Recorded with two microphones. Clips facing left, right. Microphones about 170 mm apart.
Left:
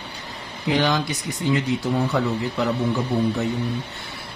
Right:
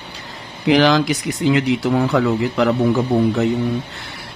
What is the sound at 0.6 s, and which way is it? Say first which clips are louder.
Speech: right 7 dB; 90° right.